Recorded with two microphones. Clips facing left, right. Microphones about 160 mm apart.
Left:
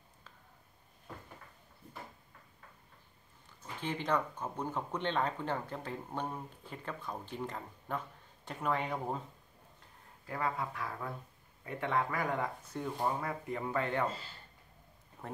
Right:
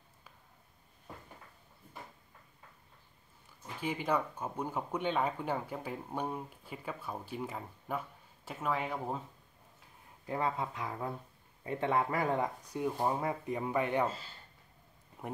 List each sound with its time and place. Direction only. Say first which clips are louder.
3.6 s speech: right 2 dB; 10° right (ahead or behind)
10.2 s speech: right 2 dB; 20° right (ahead or behind)
15.2 s speech: right 3 dB; 15° right (ahead or behind)